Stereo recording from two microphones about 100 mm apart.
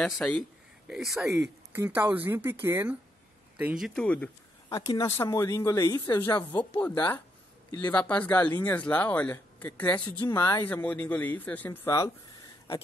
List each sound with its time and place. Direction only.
0.1 s speech: 5° left (ahead or behind)
1.7 s speech: 20° right (ahead or behind)
3.8 s speech: 5° left (ahead or behind)
4.6 s speech: 35° left (ahead or behind)
5.0 s speech: 25° left (ahead or behind)
6.3 s speech: 50° left (ahead or behind)
6.7 s speech: 15° left (ahead or behind)
9.9 s speech: 50° left (ahead or behind)
10.2 s speech: 30° left (ahead or behind)
10.6 s speech: 15° left (ahead or behind)